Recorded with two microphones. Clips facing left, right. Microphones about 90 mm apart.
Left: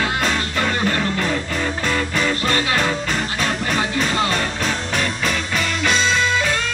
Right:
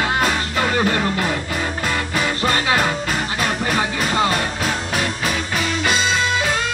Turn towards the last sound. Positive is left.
turn(degrees=-10)  # may be behind; listen again after turning